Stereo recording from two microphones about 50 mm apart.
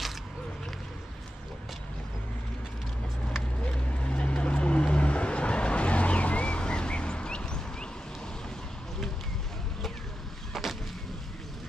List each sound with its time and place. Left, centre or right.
3.6 s vehicle: left
10.5 s vehicle: centre